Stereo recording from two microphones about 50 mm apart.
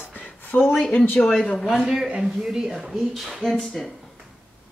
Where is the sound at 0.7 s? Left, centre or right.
Left.